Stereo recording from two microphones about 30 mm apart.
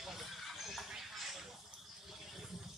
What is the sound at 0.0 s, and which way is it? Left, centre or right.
Horse, centre.